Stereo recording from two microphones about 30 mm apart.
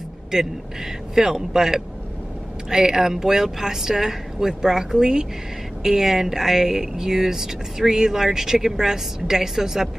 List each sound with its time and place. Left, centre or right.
0.3 s speech: centre
5.8 s speech: centre